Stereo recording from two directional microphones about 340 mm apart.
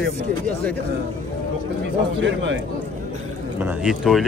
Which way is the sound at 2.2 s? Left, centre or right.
Right.